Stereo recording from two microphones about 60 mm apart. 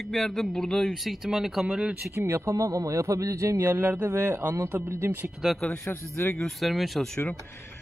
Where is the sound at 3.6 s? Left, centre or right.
Right.